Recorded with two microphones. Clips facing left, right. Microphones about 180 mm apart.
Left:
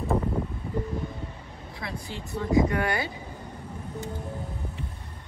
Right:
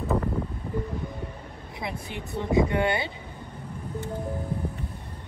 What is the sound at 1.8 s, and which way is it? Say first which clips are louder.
A woman's voice: right 2 dB; 20° right (ahead or behind).